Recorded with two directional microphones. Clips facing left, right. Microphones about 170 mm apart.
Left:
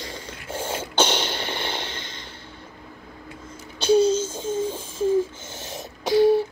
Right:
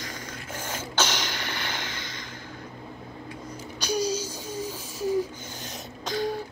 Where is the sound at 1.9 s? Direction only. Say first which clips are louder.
Left 1 dB; 10° right (ahead or behind).